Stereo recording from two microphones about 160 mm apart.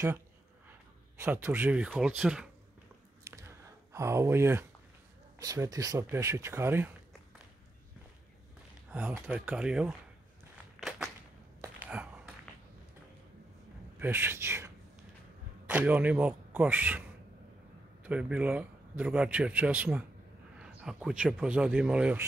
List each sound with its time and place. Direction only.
1.2 s a man's voice: 15° right (ahead or behind)
3.3 s a sound: 20° right (ahead or behind)
5.4 s a man's voice: 20° right (ahead or behind)
9.3 s speech: 5° right (ahead or behind)
10.8 s walk: centre (ahead or behind)
11.6 s a sound: 10° right (ahead or behind)
12.5 s a sound: 10° left (ahead or behind)
13.9 s a man's voice: 15° right (ahead or behind)
18.0 s a man's voice: 10° right (ahead or behind)